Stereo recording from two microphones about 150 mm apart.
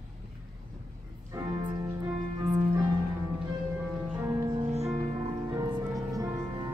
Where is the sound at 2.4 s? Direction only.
35° right (ahead or behind).